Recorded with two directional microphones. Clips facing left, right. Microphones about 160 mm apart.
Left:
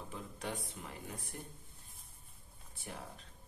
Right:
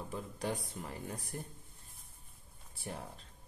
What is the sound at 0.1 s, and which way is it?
Speech, 35° right (ahead or behind).